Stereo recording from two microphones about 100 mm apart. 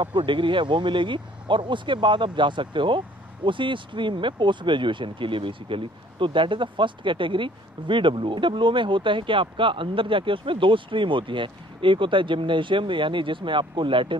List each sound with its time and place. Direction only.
0.0 s speech: 55° right (ahead or behind)